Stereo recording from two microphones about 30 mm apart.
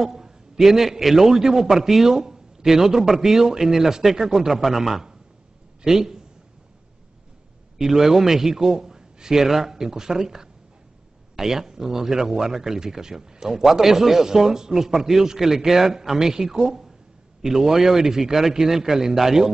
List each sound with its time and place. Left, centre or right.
0.0 s a man's voice: centre
7.7 s a man's voice: centre
13.5 s a man's voice: centre